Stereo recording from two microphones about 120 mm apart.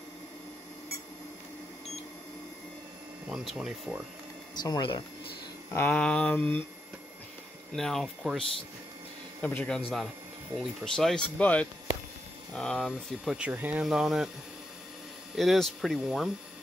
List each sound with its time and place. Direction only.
3.3 s speech: 5° right (ahead or behind)
4.6 s speech: 30° left (ahead or behind)
5.7 s a sound: 15° left (ahead or behind)
7.7 s speech: 5° left (ahead or behind)
9.4 s speech: 10° left (ahead or behind); by 13.5 s 5° right (ahead or behind)
13.5 s speech: 15° right (ahead or behind)
13.8 s speech: 5° right (ahead or behind)
15.3 s speech: centre (ahead or behind)